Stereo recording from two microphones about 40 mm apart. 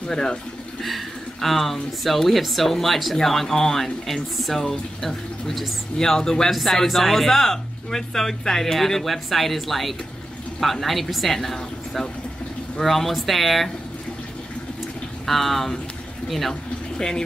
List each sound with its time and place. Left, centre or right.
0.1 s speech: centre
0.8 s a man's voice: centre
15.2 s a man's voice: centre
16.9 s speech: centre